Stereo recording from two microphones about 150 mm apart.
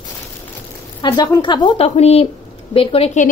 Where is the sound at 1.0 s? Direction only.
25° left (ahead or behind).